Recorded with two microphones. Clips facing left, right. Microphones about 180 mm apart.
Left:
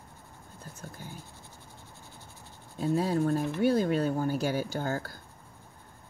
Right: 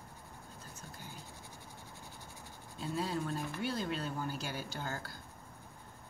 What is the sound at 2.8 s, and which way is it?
Speech, 55° left (ahead or behind).